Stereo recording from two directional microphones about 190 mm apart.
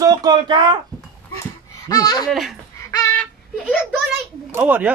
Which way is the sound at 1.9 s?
20° left (ahead or behind).